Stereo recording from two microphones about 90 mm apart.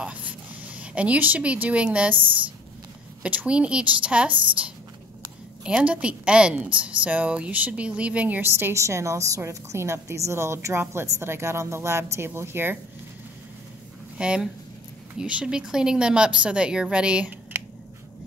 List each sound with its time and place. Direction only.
0.0 s a woman's voice: 15° right (ahead or behind)
14.1 s speech: 10° right (ahead or behind)